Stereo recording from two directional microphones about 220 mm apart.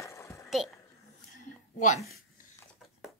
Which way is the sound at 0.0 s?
10° left (ahead or behind).